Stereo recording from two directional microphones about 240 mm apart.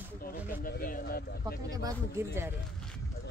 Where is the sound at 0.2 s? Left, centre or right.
Left.